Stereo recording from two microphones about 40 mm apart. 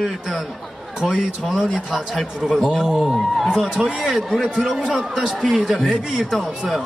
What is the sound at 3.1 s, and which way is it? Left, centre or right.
Speech, centre.